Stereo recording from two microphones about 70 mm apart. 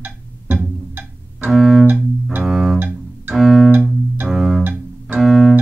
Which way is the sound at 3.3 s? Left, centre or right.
Centre.